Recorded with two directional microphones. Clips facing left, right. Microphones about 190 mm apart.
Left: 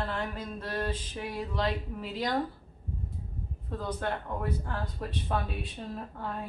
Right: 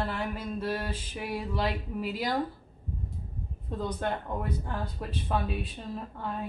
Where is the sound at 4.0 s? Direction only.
20° right (ahead or behind).